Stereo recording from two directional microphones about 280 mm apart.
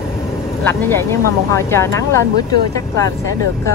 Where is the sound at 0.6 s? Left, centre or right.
Centre.